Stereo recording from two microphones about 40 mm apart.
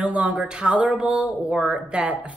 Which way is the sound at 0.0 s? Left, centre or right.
Right.